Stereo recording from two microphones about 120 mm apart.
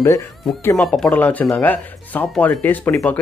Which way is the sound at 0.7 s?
10° left (ahead or behind).